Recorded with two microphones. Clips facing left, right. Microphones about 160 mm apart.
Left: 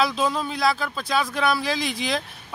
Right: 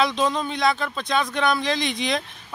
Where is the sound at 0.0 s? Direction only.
5° left (ahead or behind).